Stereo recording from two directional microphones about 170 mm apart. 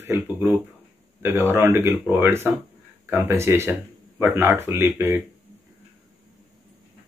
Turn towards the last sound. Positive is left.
turn(degrees=-15)  # may be behind; listen again after turning